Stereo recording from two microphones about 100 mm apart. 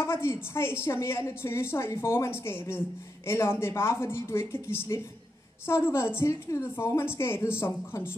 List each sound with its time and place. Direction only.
0.0 s a woman's voice: 25° left (ahead or behind)